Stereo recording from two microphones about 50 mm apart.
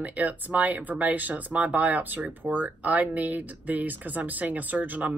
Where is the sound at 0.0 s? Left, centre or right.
Right.